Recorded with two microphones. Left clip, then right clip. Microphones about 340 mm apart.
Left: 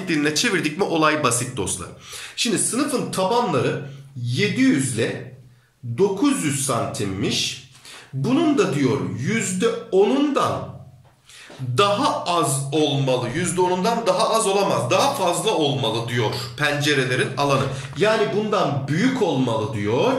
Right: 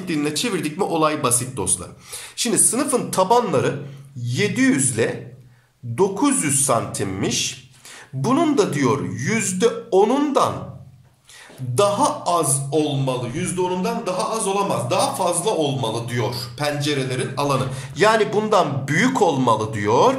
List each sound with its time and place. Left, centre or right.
0.0 s a man's voice: centre
11.7 s a man's voice: centre